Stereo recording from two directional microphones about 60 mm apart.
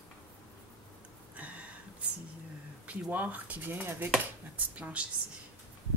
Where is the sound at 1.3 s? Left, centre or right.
Right.